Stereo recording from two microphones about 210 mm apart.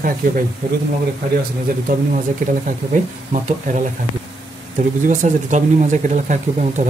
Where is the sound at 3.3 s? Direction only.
40° right (ahead or behind).